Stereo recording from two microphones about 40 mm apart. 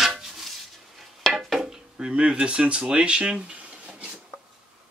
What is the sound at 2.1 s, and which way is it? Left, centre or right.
Speech, right.